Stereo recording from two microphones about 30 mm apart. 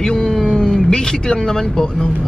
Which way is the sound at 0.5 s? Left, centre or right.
Left.